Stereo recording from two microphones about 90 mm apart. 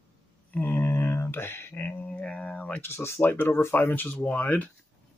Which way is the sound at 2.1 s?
10° left (ahead or behind).